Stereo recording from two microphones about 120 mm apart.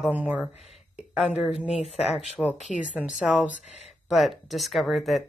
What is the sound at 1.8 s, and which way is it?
Speech, 60° left (ahead or behind).